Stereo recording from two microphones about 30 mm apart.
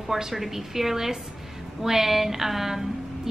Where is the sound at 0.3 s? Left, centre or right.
Centre.